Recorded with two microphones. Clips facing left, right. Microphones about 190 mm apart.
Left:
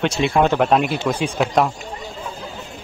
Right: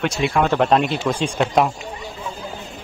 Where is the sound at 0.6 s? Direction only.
5° left (ahead or behind).